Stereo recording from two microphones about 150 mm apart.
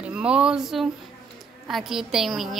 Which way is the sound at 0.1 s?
5° right (ahead or behind).